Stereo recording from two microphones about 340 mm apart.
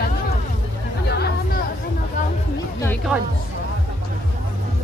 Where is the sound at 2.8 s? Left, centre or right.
Centre.